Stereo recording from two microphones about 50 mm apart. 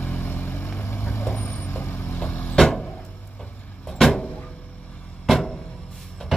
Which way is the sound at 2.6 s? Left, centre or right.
Centre.